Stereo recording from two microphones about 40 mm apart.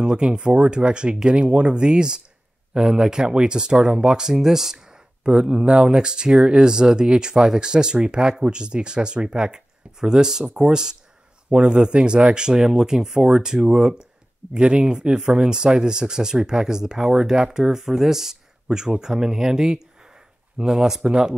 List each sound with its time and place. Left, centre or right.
0.0 s speech: right
5.2 s speech: right
14.5 s speech: right